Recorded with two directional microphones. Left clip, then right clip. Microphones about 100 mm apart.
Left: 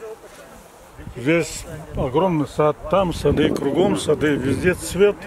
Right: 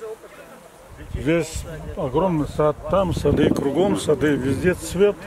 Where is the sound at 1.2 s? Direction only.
Centre (ahead or behind).